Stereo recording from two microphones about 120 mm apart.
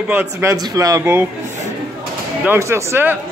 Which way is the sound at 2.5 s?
25° right (ahead or behind).